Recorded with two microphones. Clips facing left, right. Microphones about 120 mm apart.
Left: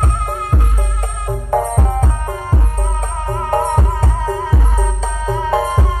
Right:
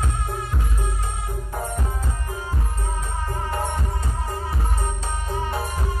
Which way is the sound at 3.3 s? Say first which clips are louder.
Left 12 dB; 65° left (ahead or behind).